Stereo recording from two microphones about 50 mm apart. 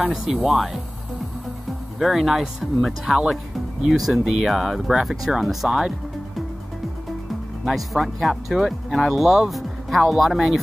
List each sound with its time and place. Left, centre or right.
0.1 s speech: centre
2.0 s speech: centre
7.6 s speech: centre